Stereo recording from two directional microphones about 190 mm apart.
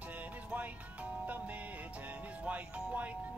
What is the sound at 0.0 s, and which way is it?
Music, 10° right (ahead or behind).